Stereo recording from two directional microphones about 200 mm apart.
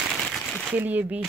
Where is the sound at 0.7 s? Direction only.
10° right (ahead or behind).